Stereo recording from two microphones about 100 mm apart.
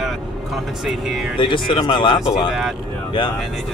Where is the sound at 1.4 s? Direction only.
55° left (ahead or behind).